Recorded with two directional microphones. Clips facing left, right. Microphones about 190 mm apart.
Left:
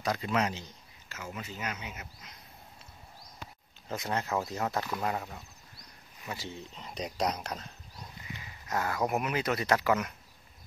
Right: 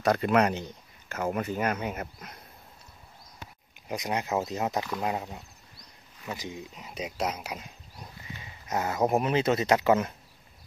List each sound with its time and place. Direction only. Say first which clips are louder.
0.0 s speech: right 7 dB; 60° right (ahead or behind)
3.9 s speech: right 3 dB; 15° right (ahead or behind)
8.4 s speech: right 3 dB; 20° right (ahead or behind)